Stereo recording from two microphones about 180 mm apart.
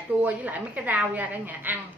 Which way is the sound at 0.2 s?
10° right (ahead or behind).